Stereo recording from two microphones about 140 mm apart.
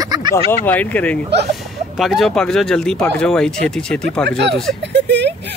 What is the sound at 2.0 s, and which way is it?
Speech, centre (ahead or behind).